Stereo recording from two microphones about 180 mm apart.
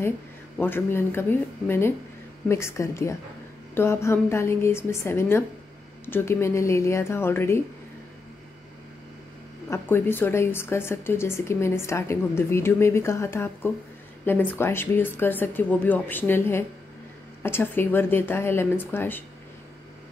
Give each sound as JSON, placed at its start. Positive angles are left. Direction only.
{"t": 0.6, "sound": "a woman's voice", "side_deg": 10}
{"t": 9.7, "sound": "a woman's voice", "side_deg": 15}